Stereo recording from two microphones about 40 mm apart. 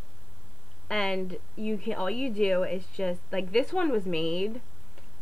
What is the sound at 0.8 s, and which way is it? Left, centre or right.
A woman's voice, centre.